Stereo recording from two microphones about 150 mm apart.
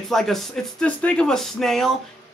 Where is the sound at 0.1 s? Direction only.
Centre (ahead or behind).